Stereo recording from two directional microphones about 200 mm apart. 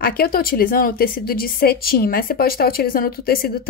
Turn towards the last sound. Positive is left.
turn(degrees=50)  # may be behind; listen again after turning